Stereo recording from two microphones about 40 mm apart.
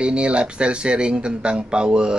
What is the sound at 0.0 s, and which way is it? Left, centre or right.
Speech, right.